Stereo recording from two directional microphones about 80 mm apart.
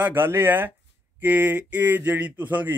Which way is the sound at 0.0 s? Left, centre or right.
Right.